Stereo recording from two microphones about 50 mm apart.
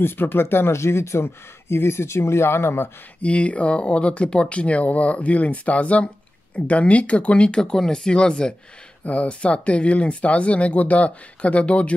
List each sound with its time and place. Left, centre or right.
0.0 s speech: left
0.7 s speech: left
3.2 s speech: left
9.0 s speech: left